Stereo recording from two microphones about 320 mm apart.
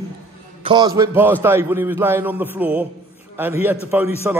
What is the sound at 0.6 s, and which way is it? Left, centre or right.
A man's voice, centre.